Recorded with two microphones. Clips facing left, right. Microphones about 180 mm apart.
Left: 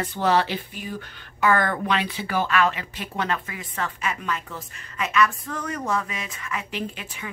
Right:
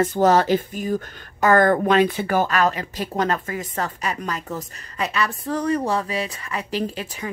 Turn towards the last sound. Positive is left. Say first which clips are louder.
# right 6 dB
turn(degrees=-35)  # may be behind; listen again after turning